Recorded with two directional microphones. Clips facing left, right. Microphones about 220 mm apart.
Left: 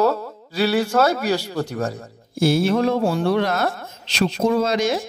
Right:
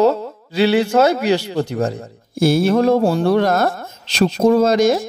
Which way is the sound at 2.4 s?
45° right (ahead or behind).